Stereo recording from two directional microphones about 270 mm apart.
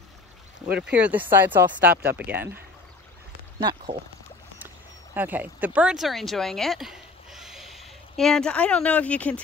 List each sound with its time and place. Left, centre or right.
0.7 s speech: centre
3.5 s speech: centre
4.6 s a sound: centre
5.8 s speech: centre